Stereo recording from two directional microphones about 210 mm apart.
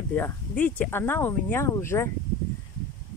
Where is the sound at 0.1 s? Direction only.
10° left (ahead or behind).